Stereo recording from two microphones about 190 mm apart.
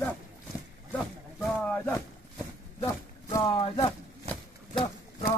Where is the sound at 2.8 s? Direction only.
15° left (ahead or behind).